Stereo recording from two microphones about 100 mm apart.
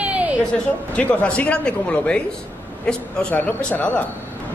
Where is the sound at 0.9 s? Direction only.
15° left (ahead or behind).